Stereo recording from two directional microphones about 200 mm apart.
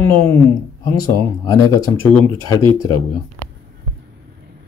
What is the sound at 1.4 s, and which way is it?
Speech, 20° left (ahead or behind).